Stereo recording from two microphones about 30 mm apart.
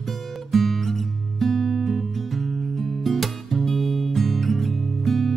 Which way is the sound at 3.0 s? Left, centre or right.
Centre.